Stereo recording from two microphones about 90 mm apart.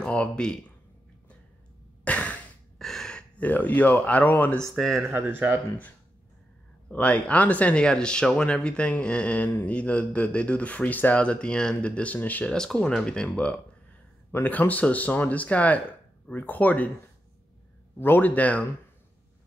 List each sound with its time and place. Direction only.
0.0 s speech: 10° left (ahead or behind)
2.0 s sigh: 15° left (ahead or behind)
2.8 s speech: 5° left (ahead or behind)
4.9 s speech: 25° right (ahead or behind)
6.9 s speech: 15° left (ahead or behind)
12.5 s speech: 10° left (ahead or behind)
17.9 s a man's voice: 20° left (ahead or behind)